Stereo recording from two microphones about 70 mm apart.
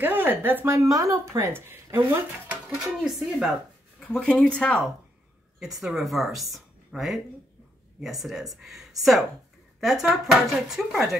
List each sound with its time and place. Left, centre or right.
0.0 s speech: right
0.7 s speech: right
2.7 s speech: centre
4.1 s speech: centre
5.8 s speech: centre
6.5 s a sound: centre
8.0 s speech: centre